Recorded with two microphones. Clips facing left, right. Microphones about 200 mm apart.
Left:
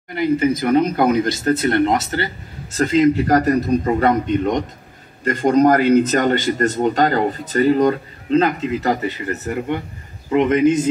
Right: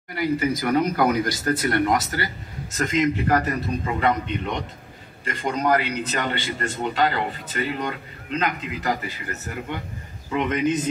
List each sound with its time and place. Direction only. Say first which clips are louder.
0.1 s a man's voice: left 6 dB; 25° left (ahead or behind)